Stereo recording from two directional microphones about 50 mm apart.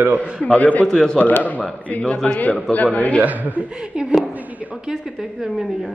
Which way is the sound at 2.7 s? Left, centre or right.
Left.